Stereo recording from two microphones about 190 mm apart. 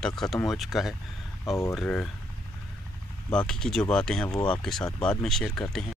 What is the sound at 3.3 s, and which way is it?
Speech, 5° left (ahead or behind).